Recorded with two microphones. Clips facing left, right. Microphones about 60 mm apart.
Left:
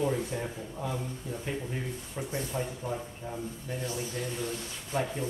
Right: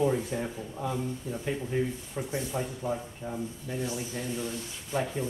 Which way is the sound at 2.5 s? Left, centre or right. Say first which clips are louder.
Right 2 dB; centre.